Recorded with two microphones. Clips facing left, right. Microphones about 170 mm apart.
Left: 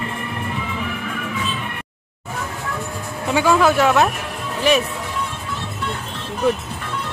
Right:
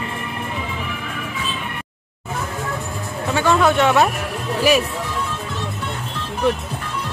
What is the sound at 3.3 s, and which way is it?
Speech, 5° left (ahead or behind).